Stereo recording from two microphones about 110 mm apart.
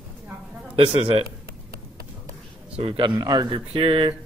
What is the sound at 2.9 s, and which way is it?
Speech, 45° right (ahead or behind).